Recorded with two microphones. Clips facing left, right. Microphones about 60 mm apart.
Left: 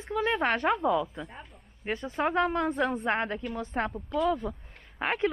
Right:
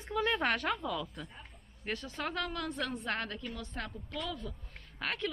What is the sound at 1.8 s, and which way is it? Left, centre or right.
Speech, centre.